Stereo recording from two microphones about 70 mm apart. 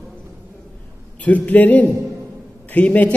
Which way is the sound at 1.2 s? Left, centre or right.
Left.